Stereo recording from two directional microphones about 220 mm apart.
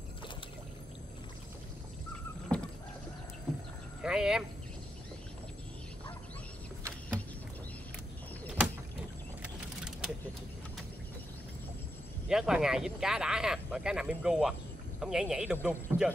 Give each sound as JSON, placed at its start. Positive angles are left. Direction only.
{"t": 2.5, "sound": "rowboat", "side_deg": 5}
{"t": 4.0, "sound": "speech", "side_deg": -5}
{"t": 9.4, "sound": "vehicle", "side_deg": -5}
{"t": 12.3, "sound": "speech", "side_deg": -5}